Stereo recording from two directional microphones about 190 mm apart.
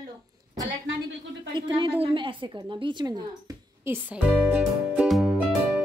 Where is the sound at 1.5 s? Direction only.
25° right (ahead or behind).